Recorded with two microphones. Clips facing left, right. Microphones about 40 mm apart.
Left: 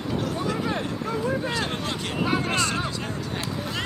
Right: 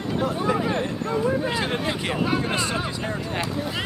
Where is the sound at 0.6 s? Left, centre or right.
Centre.